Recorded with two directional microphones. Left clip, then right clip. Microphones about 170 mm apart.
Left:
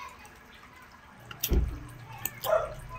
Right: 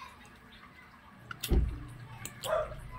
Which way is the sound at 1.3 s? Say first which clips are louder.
Left 2 dB; 20° right (ahead or behind).